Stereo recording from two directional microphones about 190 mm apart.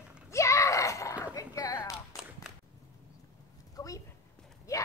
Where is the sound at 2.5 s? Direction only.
5° right (ahead or behind).